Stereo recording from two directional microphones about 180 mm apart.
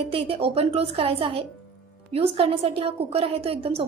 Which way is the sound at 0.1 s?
30° right (ahead or behind).